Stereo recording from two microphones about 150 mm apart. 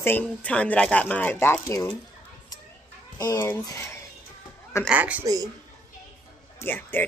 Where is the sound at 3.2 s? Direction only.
20° left (ahead or behind).